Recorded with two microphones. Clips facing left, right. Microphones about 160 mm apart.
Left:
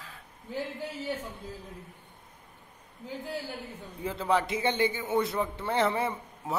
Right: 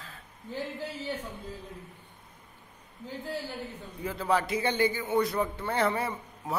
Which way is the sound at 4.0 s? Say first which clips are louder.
Even; 25° left (ahead or behind).